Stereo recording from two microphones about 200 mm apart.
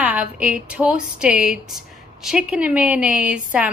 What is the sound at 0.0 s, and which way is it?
A woman's voice, 5° right (ahead or behind).